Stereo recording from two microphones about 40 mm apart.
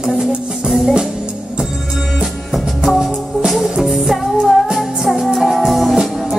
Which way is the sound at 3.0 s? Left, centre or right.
Centre.